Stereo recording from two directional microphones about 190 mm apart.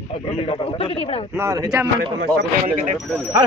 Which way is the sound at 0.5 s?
25° left (ahead or behind).